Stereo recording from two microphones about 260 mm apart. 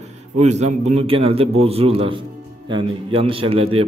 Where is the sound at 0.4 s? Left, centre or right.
Right.